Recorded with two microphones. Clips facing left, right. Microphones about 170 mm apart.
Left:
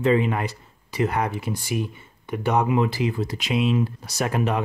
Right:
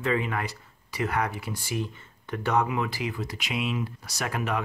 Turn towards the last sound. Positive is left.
turn(degrees=25)  # may be behind; listen again after turning